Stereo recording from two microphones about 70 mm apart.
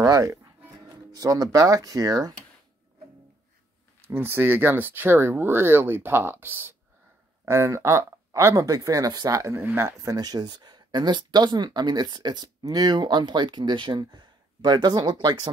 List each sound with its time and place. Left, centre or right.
0.0 s speech: right
4.0 s speech: right
9.8 s speech: right